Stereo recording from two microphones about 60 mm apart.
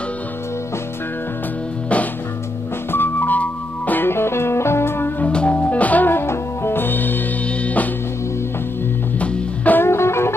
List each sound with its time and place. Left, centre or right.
2.9 s music: left
4.1 s music: left
5.2 s music: centre
9.2 s music: left
9.8 s music: left